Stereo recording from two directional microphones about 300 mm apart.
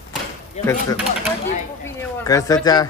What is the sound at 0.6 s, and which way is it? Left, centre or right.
Speech, left.